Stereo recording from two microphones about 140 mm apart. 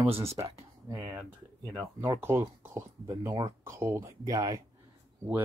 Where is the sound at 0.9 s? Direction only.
15° right (ahead or behind).